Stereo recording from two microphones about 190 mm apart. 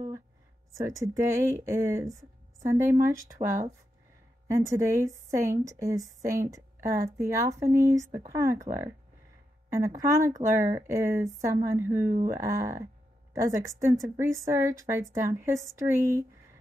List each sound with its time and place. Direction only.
0.7 s a woman's voice: 15° right (ahead or behind)
3.4 s speech: 30° right (ahead or behind)
4.5 s a woman's voice: 15° right (ahead or behind)
9.7 s a woman's voice: 15° right (ahead or behind)